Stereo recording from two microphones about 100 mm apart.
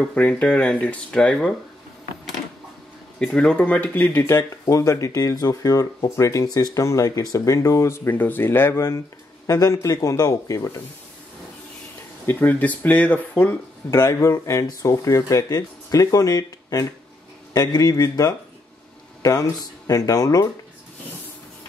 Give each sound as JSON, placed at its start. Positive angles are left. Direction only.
{"t": 0.0, "sound": "speech", "side_deg": 10}
{"t": 3.2, "sound": "speech", "side_deg": 5}
{"t": 12.3, "sound": "speech", "side_deg": 20}
{"t": 13.8, "sound": "speech", "side_deg": 30}